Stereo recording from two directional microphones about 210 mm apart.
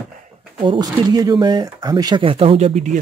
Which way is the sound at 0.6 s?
20° right (ahead or behind).